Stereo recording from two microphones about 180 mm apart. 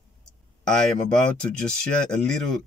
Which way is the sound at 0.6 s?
5° left (ahead or behind).